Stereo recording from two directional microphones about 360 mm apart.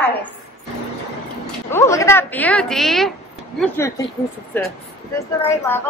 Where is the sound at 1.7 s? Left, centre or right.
Centre.